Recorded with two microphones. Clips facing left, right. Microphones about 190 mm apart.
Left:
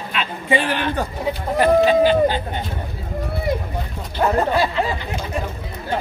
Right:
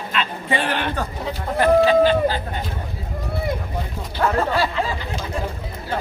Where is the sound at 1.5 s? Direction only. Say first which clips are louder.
Even; 15° left (ahead or behind).